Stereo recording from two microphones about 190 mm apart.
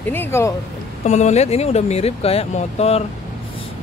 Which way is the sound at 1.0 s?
35° left (ahead or behind).